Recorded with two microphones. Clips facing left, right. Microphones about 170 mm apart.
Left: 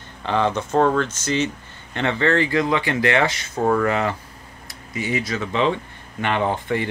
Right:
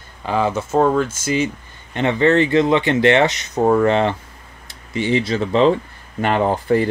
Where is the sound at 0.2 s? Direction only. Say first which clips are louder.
Right 2 dB; 5° right (ahead or behind).